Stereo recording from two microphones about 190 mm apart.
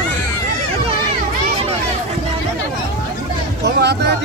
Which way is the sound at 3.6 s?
60° right (ahead or behind).